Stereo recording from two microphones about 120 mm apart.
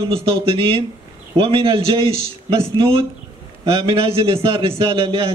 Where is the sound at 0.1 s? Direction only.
50° right (ahead or behind).